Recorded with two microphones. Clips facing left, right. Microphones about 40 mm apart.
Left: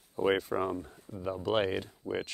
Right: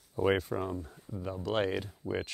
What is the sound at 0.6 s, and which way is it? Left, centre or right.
Speech, left.